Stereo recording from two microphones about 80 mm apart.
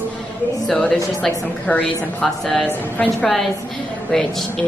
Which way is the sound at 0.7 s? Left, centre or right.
Centre.